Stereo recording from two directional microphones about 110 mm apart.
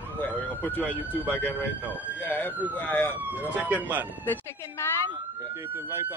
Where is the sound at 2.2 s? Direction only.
15° left (ahead or behind).